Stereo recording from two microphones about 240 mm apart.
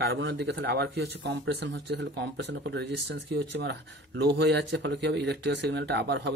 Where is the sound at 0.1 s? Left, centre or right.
Right.